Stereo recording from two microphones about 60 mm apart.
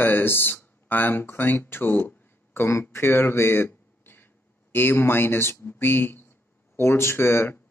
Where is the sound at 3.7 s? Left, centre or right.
Left.